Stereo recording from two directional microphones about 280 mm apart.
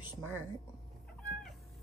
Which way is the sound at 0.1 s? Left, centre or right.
Centre.